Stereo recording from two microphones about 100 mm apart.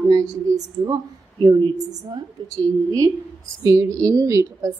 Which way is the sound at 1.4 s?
50° right (ahead or behind).